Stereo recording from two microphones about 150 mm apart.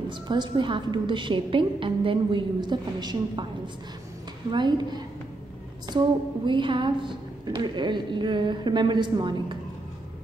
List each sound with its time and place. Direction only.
0.3 s a woman's voice: 30° right (ahead or behind)
4.5 s a woman's voice: 30° right (ahead or behind)